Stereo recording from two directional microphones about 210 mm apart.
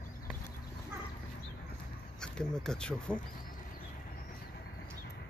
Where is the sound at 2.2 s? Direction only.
5° left (ahead or behind).